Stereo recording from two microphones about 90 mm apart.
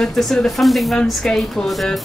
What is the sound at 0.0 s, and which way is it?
A woman's voice, 5° left (ahead or behind).